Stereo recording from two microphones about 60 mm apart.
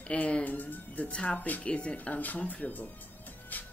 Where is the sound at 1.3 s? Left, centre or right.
Left.